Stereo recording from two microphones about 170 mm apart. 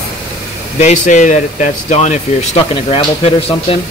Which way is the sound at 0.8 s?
45° left (ahead or behind).